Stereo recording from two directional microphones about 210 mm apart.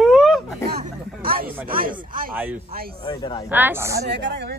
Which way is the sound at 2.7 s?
45° right (ahead or behind).